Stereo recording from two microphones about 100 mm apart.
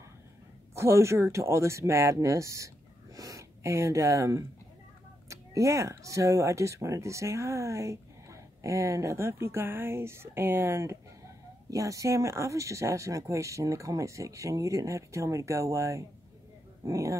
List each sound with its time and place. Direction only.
0.7 s speech: 25° right (ahead or behind)